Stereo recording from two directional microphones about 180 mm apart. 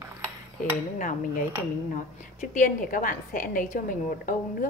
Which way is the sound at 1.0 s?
45° left (ahead or behind).